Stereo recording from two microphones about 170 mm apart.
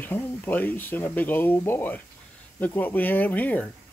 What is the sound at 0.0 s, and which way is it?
Speech, 10° left (ahead or behind).